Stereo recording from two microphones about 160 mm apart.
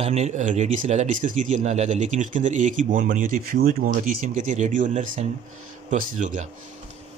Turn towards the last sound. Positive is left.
turn(degrees=-50)  # may be behind; listen again after turning